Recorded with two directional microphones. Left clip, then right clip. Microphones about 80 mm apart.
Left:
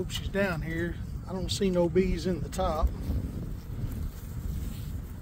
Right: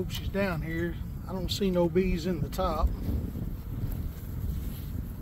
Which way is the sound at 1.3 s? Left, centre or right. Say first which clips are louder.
Left 1 dB; left.